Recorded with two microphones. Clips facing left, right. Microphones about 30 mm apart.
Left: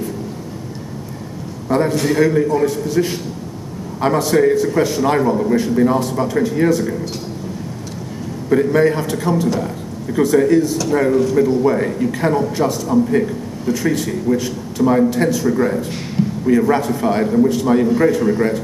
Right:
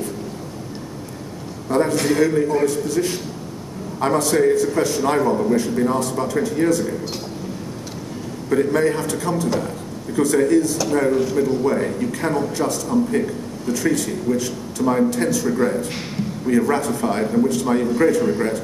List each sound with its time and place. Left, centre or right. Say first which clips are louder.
1.7 s a man's voice: left 2 dB; centre
8.5 s a man's voice: left 4 dB; centre